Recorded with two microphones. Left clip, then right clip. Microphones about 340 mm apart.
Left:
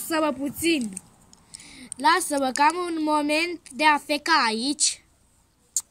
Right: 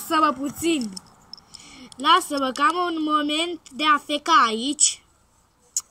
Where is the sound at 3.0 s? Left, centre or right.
Right.